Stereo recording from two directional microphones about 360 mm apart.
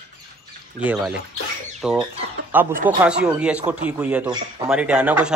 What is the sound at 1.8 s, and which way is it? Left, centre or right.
A man's voice, centre.